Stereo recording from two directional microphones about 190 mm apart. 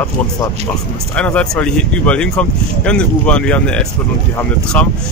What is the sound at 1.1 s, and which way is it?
Speech, 5° left (ahead or behind).